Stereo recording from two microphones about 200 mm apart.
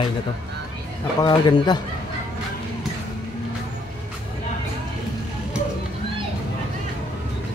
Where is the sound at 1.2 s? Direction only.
20° left (ahead or behind).